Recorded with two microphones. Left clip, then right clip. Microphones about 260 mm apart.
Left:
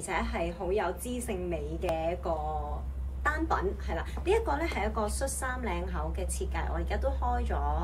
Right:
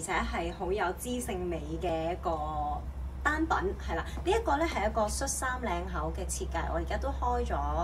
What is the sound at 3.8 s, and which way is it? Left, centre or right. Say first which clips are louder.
A woman's voice: even; centre.